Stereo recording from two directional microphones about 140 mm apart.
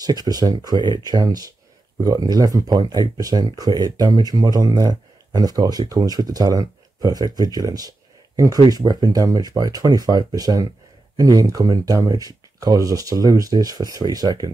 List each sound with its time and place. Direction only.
0.0 s speech: 30° right (ahead or behind)